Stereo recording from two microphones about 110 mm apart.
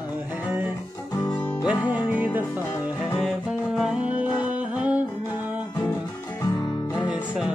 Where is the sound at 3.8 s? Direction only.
10° right (ahead or behind).